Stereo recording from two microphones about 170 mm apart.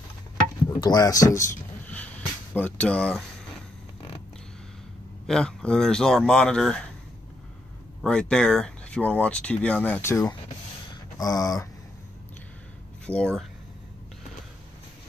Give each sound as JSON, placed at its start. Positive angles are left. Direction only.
{"t": 0.7, "sound": "speech", "side_deg": 25}
{"t": 5.2, "sound": "speech", "side_deg": 5}
{"t": 8.0, "sound": "speech", "side_deg": 5}
{"t": 11.1, "sound": "a sound", "side_deg": 20}
{"t": 13.0, "sound": "speech", "side_deg": 5}